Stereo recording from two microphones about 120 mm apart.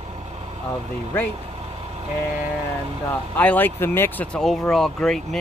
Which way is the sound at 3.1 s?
15° left (ahead or behind).